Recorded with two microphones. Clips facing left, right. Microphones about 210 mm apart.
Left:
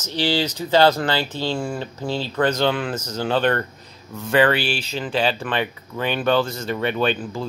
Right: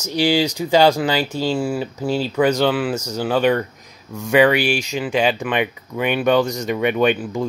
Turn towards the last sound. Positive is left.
turn(degrees=-15)  # may be behind; listen again after turning